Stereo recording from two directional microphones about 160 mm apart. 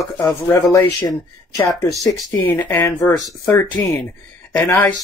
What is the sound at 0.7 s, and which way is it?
Speech, 15° left (ahead or behind).